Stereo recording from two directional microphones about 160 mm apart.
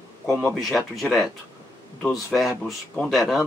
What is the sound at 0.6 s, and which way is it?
Speech, centre (ahead or behind).